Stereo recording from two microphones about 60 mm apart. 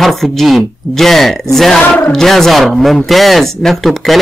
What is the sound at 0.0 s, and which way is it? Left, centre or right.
Speech, centre.